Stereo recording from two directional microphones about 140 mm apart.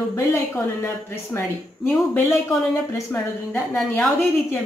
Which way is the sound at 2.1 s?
20° left (ahead or behind).